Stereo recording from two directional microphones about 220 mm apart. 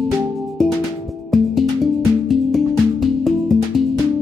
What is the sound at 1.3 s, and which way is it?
Music, centre (ahead or behind).